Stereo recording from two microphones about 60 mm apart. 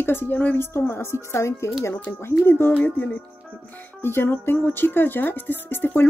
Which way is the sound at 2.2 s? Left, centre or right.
Left.